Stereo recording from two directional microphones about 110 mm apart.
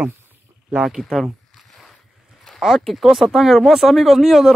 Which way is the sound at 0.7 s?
5° right (ahead or behind).